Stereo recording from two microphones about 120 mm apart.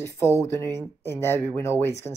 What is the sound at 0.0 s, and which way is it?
Speech, 20° left (ahead or behind).